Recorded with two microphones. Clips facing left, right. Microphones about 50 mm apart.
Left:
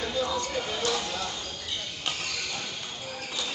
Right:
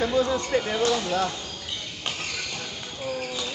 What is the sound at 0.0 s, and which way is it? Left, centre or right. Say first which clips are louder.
Speech: right 6 dB; right.